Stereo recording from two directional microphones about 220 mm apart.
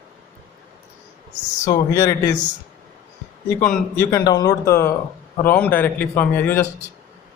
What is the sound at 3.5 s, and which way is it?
Speech, 10° left (ahead or behind).